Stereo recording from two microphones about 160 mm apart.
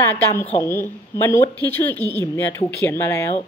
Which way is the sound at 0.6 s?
15° left (ahead or behind).